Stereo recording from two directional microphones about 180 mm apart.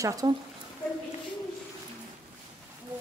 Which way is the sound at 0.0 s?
20° right (ahead or behind).